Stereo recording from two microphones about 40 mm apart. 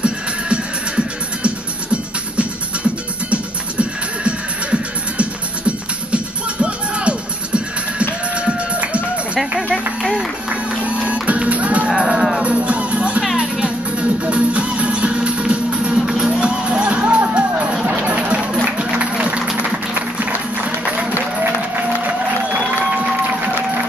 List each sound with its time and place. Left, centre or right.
0.0 s music: right
10.8 s music: right
11.9 s music: centre
12.4 s music: right
13.4 s music: right
14.0 s music: right
16.1 s music: centre
17.8 s a sound: right
19.9 s music: right